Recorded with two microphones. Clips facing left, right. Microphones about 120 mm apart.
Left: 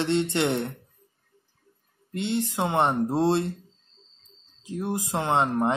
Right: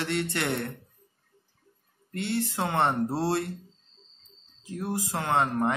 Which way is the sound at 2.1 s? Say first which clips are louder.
Left 2 dB; 20° left (ahead or behind).